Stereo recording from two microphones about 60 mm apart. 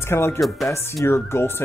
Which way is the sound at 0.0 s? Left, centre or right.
Left.